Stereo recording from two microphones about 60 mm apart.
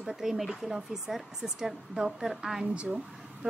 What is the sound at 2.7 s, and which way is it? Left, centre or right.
Speech, centre.